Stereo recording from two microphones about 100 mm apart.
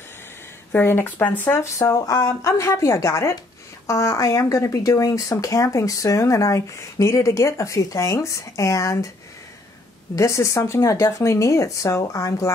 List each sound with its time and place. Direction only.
0.7 s speech: 20° left (ahead or behind)
1.8 s speech: 30° left (ahead or behind)
10.1 s speech: 30° left (ahead or behind)